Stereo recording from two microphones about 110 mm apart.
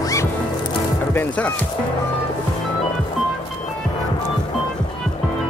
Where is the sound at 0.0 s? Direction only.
30° left (ahead or behind).